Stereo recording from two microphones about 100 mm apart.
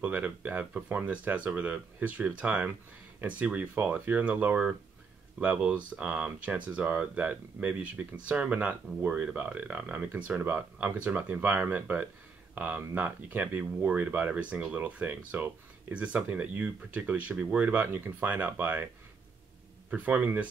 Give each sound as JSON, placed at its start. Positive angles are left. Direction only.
{"t": 0.0, "sound": "speech", "side_deg": -15}
{"t": 19.9, "sound": "speech", "side_deg": -15}